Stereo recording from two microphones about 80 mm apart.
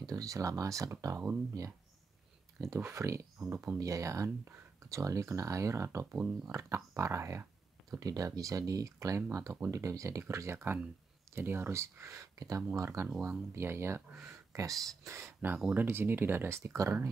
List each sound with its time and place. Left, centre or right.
0.0 s speech: right
2.6 s speech: right
6.1 s speech: centre
6.5 s speech: right
8.0 s speech: right
13.6 s speech: right